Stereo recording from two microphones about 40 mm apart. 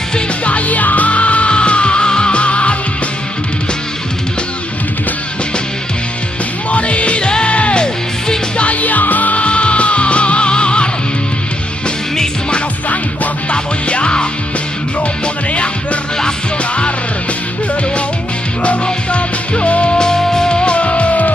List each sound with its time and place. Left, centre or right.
0.5 s music: left
6.7 s music: left
12.9 s music: left
15.5 s music: left
18.6 s music: left
20.0 s music: centre
20.7 s music: left